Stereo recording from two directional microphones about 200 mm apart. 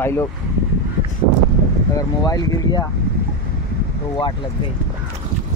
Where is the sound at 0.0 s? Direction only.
10° left (ahead or behind).